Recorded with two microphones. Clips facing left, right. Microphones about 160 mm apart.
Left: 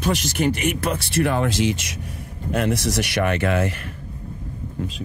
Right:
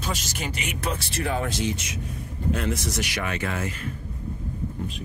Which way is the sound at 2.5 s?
70° left (ahead or behind).